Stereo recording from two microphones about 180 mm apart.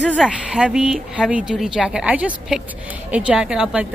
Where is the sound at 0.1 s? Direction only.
5° right (ahead or behind).